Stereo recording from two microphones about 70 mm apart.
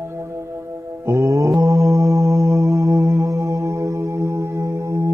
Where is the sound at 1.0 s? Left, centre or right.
Right.